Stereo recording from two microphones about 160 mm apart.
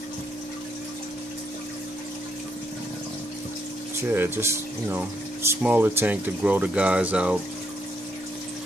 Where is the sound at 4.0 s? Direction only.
15° right (ahead or behind).